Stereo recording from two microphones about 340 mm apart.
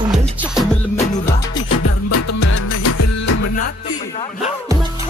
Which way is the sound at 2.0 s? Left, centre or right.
Left.